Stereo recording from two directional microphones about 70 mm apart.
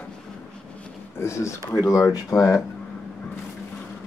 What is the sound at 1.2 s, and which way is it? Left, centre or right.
Speech, left.